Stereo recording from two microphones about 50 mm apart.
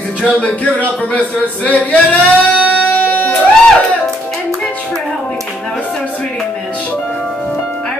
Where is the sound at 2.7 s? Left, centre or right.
Left.